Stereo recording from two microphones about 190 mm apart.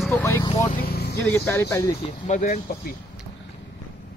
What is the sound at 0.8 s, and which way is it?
Vehicle, 55° left (ahead or behind).